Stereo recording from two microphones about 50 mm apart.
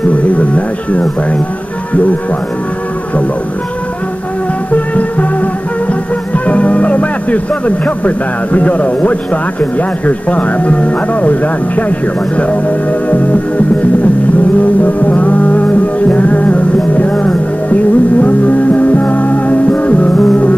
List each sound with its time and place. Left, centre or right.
0.1 s music: left
6.3 s music: left
8.5 s speech: left
13.1 s speech: left
14.6 s music: left